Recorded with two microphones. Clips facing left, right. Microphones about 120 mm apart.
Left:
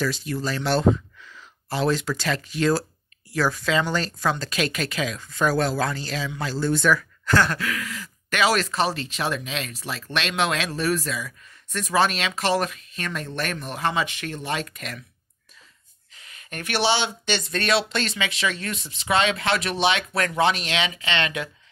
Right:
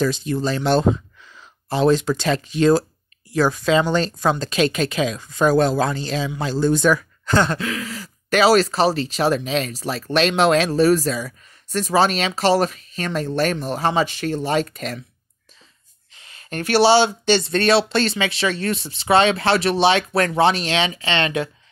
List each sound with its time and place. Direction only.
0.0 s speech: 25° right (ahead or behind)
16.2 s speech: 30° right (ahead or behind)